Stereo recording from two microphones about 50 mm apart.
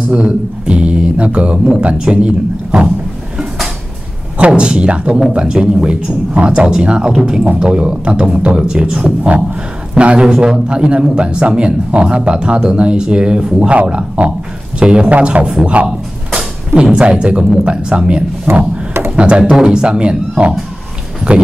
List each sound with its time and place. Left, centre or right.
0.1 s speech: right
4.5 s speech: centre
16.9 s speech: right